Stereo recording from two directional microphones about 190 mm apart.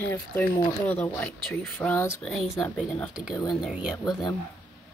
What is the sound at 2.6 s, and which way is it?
Speech, centre (ahead or behind).